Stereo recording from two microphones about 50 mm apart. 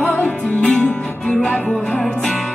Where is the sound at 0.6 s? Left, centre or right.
Left.